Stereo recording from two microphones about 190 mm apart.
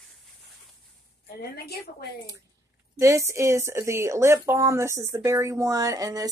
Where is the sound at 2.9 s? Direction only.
15° right (ahead or behind).